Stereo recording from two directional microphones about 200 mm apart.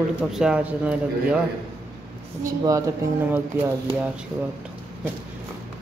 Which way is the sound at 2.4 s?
15° right (ahead or behind).